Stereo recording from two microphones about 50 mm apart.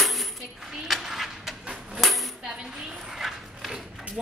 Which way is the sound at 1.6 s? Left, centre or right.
Right.